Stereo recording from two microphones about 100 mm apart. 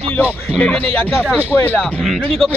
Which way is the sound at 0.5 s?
15° left (ahead or behind).